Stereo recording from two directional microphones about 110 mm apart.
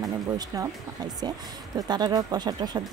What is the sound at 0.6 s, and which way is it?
Speech, 35° right (ahead or behind).